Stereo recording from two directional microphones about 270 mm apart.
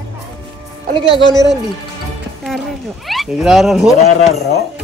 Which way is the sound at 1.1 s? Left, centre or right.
Centre.